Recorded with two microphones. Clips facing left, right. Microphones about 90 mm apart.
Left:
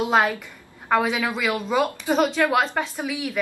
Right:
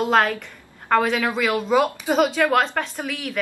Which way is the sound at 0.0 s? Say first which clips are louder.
Right 1 dB; 5° left (ahead or behind).